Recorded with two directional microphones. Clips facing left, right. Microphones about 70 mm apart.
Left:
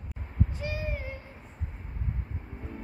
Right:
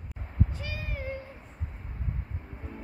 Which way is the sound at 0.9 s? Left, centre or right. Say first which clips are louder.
Right 1 dB; centre.